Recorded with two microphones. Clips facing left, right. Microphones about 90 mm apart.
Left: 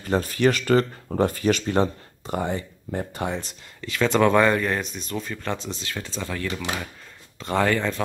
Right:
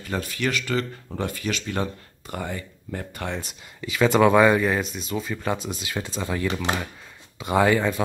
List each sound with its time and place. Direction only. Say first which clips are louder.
0.0 s speech: left 6 dB; 40° left (ahead or behind)
3.3 s speech: even; 5° right (ahead or behind)